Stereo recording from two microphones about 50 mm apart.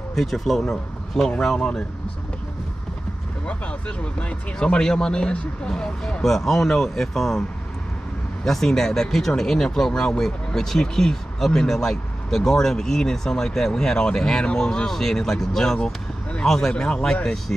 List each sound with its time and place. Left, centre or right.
0.1 s speech: centre
1.6 s speech: left
3.4 s speech: left
4.6 s speech: centre
8.5 s speech: centre